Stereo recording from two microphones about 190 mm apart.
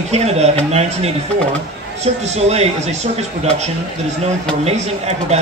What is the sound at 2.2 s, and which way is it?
Speech, 35° right (ahead or behind).